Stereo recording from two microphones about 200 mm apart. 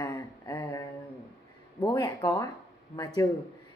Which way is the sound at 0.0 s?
15° left (ahead or behind).